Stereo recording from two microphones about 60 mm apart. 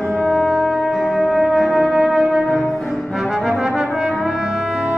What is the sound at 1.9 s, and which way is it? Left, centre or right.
Music, centre.